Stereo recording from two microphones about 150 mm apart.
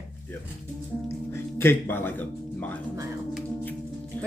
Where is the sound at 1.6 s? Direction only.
15° left (ahead or behind).